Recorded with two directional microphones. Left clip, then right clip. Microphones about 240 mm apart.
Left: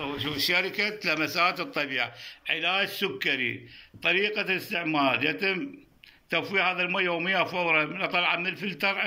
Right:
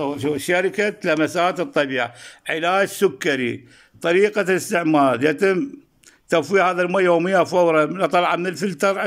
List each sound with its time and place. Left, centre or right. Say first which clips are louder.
0.0 s a man's voice: right 6 dB; right